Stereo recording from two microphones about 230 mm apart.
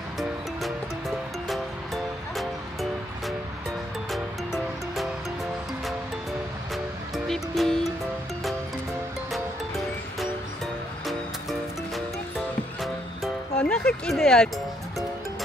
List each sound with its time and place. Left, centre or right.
0.2 s music: centre
7.2 s music: centre
12.8 s music: centre